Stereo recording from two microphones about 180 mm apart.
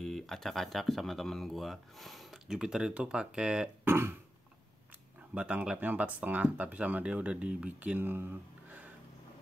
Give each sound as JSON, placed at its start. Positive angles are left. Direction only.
{"t": 0.0, "sound": "speech", "side_deg": 0}
{"t": 5.3, "sound": "speech", "side_deg": -5}